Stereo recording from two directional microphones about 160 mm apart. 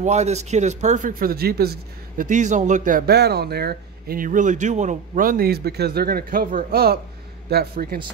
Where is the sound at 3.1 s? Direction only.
90° right.